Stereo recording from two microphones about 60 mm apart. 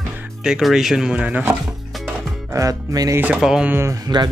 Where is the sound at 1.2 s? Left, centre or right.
Right.